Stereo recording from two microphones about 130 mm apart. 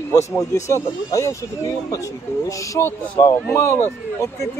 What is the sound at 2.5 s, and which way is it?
Speech, 20° left (ahead or behind).